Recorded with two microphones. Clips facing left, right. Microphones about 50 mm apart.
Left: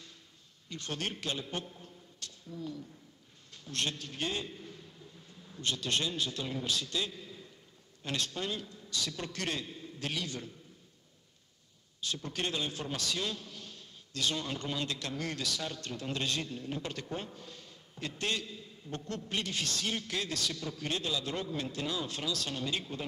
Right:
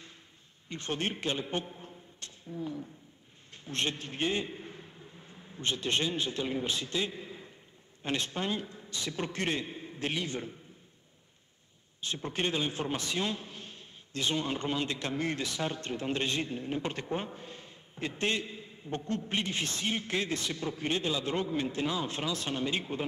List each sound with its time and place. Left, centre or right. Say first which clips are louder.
0.7 s a man's voice: right 4 dB; right
12.0 s a man's voice: right 3 dB; right